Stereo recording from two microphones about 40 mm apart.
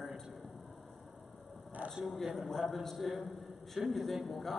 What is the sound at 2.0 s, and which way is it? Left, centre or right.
A man's voice, centre.